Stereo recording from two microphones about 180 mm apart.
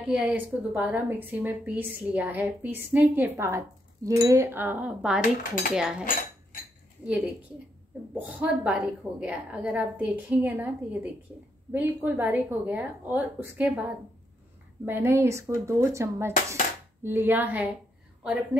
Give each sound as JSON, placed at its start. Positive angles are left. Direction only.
{"t": 0.0, "sound": "a woman's voice", "side_deg": -5}
{"t": 8.1, "sound": "a woman's voice", "side_deg": -10}